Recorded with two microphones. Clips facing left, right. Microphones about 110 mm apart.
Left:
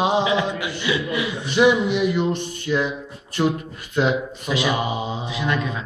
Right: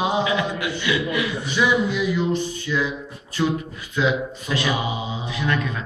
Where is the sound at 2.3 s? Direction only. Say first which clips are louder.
Even; 55° left (ahead or behind).